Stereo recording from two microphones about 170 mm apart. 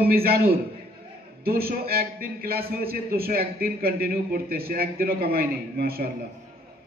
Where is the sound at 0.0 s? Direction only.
65° right (ahead or behind).